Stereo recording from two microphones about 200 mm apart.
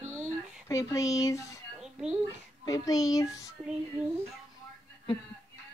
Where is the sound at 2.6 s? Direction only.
20° left (ahead or behind).